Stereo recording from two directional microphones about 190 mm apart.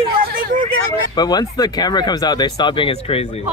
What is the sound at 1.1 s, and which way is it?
Speech, 20° left (ahead or behind).